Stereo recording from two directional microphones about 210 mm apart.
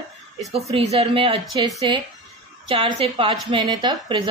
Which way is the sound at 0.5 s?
30° right (ahead or behind).